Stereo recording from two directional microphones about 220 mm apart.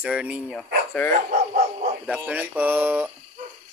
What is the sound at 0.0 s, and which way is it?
Speech, 5° right (ahead or behind).